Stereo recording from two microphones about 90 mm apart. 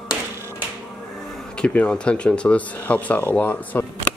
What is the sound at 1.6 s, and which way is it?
Speech, 15° left (ahead or behind).